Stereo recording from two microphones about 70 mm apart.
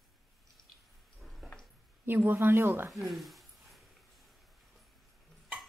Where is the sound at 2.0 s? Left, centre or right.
Right.